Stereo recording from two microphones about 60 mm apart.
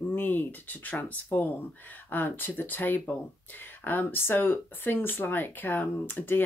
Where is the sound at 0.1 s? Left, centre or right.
Left.